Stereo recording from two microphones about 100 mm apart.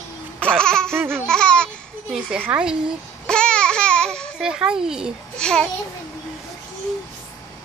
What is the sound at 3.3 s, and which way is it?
Babbling, 10° left (ahead or behind).